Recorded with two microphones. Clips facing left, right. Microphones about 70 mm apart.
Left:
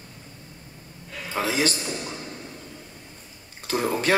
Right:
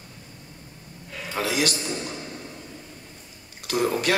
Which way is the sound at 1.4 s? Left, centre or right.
Left.